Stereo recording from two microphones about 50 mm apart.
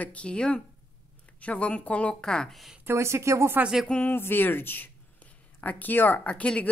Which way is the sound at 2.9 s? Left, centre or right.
Right.